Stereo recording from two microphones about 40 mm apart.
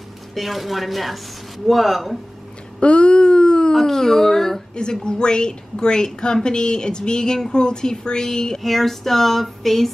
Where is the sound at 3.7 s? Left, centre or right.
Centre.